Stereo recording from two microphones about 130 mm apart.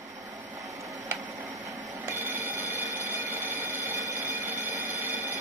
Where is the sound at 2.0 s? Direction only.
15° right (ahead or behind).